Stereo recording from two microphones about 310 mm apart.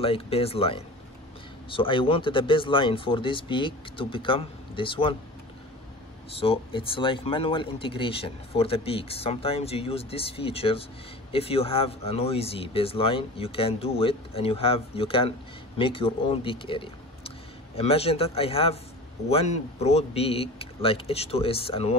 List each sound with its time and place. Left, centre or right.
0.0 s speech: centre
6.4 s speech: centre